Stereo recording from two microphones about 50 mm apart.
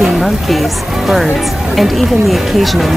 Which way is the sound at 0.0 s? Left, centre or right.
Centre.